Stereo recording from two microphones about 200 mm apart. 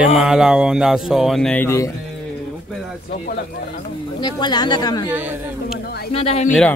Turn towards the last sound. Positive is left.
turn(degrees=30)  # may be behind; listen again after turning